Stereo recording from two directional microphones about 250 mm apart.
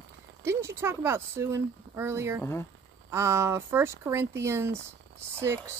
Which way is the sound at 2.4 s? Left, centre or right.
Centre.